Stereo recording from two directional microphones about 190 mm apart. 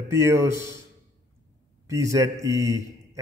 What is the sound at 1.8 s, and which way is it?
A man's voice, 15° right (ahead or behind).